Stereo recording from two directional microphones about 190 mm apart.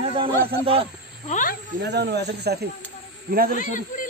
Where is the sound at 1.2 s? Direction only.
40° left (ahead or behind).